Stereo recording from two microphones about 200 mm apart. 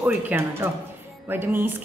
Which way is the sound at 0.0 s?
10° right (ahead or behind).